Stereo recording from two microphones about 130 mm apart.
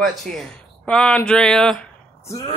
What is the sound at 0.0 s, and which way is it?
Speech, centre (ahead or behind).